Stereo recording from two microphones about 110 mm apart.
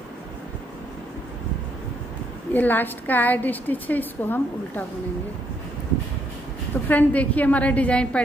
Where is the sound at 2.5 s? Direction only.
15° left (ahead or behind).